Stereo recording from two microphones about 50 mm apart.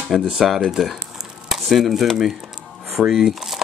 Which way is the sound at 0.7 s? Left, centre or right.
Centre.